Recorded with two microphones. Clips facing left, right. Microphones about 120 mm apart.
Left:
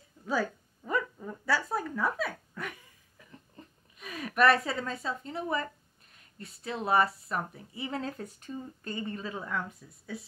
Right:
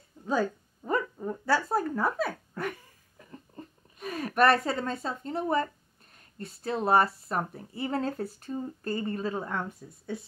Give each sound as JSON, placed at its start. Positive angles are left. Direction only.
{"t": 0.2, "sound": "speech", "side_deg": -25}
{"t": 0.8, "sound": "speech", "side_deg": -35}
{"t": 2.6, "sound": "a sound", "side_deg": -50}
{"t": 3.2, "sound": "a sound", "side_deg": -40}
{"t": 4.6, "sound": "speech", "side_deg": -40}
{"t": 10.1, "sound": "speech", "side_deg": 0}